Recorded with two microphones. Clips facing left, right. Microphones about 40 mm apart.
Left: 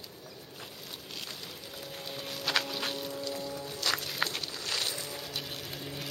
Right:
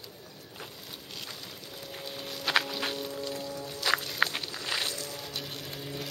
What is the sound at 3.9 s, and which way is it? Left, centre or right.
Music, centre.